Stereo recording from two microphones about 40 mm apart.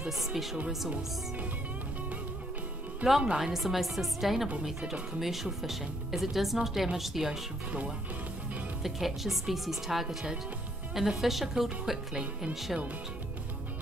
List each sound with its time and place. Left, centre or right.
0.3 s speech: centre
3.0 s speech: right
3.3 s a woman's voice: centre
8.8 s speech: centre
10.0 s speech: right
11.0 s a woman's voice: centre